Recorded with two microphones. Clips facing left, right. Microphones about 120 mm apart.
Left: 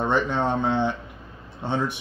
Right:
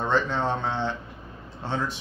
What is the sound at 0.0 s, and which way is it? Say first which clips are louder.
Speech: left 2 dB; 15° left (ahead or behind).